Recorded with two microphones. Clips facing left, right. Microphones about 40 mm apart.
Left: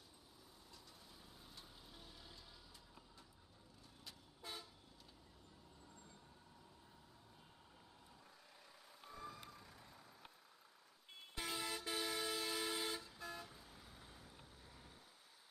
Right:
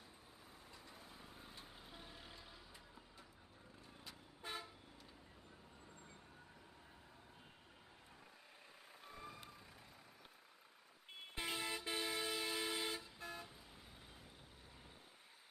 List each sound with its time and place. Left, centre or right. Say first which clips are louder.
0.9 s music: right 4 dB; right
4.1 s vehicle: right 4 dB; right
9.0 s vehicle: left 2 dB; right
11.3 s vehicle: right 1 dB; right